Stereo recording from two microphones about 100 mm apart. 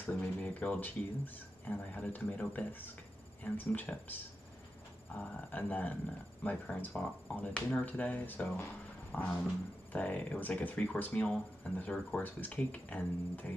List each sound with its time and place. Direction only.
0.0 s speech: 15° left (ahead or behind)
5.2 s speech: 15° left (ahead or behind)